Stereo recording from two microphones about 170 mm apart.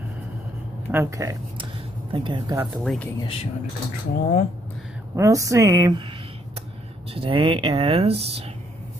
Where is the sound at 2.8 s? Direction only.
5° left (ahead or behind).